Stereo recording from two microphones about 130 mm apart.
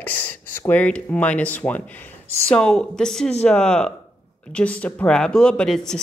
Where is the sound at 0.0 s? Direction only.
10° left (ahead or behind).